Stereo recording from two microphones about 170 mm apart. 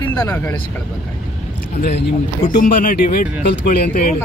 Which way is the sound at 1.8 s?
75° left (ahead or behind).